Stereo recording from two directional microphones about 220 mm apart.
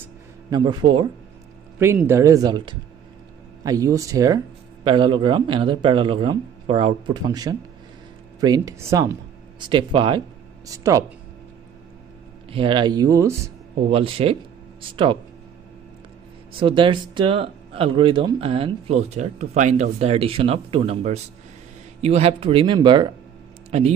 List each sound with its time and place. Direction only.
0.5 s speech: 20° right (ahead or behind)
2.0 s speech: 15° right (ahead or behind)
12.4 s speech: 25° right (ahead or behind)
16.5 s speech: 25° right (ahead or behind)